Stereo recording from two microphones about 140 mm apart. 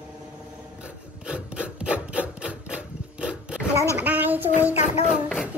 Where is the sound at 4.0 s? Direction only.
10° right (ahead or behind).